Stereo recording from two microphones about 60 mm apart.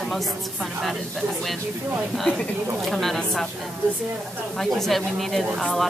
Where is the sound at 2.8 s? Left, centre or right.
Centre.